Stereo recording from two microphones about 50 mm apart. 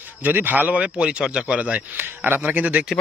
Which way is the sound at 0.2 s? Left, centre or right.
Right.